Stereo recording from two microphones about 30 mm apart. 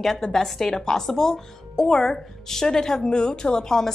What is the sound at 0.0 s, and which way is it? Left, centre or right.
A woman's voice, centre.